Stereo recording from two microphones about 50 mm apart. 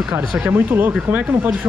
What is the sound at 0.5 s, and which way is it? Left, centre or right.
Speech, right.